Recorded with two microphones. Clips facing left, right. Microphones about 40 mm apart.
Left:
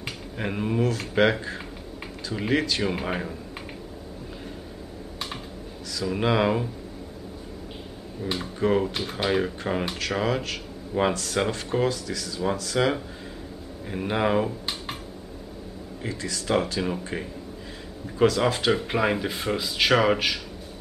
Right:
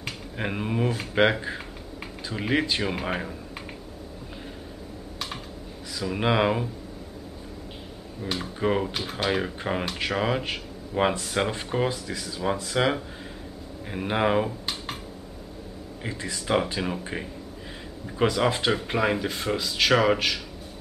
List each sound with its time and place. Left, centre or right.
0.4 s speech: centre
5.9 s speech: centre
8.2 s speech: centre
16.0 s speech: right
16.8 s speech: centre
18.4 s speech: centre